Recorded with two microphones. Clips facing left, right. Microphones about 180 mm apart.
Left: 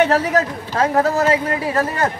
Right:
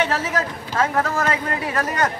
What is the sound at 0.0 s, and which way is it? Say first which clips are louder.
A woman's voice: left 6 dB; 45° left (ahead or behind).